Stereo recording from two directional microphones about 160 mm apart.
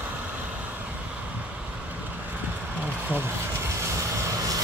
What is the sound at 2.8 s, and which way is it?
Vehicle, 10° right (ahead or behind).